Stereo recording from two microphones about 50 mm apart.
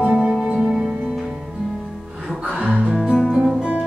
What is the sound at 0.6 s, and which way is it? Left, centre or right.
Music, centre.